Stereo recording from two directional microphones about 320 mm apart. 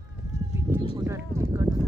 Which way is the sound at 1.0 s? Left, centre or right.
Centre.